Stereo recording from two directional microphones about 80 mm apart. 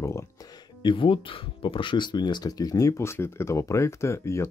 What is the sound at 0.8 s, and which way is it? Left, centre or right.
Speech, left.